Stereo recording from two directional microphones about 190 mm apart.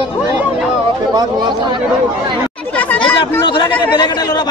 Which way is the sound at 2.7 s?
5° left (ahead or behind).